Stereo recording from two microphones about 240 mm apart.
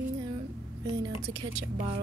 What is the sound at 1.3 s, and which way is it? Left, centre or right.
Speech, right.